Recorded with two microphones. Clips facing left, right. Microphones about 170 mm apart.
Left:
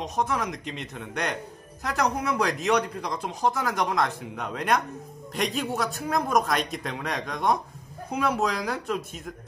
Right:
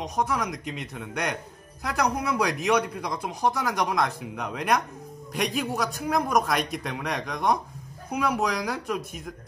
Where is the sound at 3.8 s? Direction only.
Centre (ahead or behind).